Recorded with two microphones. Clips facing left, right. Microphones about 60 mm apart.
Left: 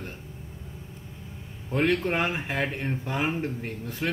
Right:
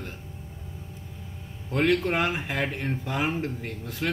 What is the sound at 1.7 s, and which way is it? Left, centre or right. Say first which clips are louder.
Speech: right 1 dB; centre.